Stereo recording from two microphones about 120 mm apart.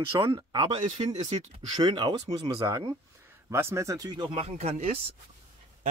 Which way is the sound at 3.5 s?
20° right (ahead or behind).